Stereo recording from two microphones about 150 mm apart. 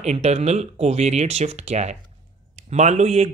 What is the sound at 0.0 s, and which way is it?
A man's voice, 45° right (ahead or behind).